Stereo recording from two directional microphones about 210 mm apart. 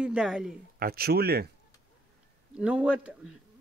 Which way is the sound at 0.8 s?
45° right (ahead or behind).